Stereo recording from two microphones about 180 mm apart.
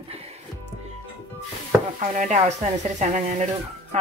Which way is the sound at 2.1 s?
40° right (ahead or behind).